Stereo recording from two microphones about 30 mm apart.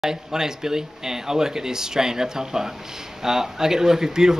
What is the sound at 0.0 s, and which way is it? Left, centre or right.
Speech, centre.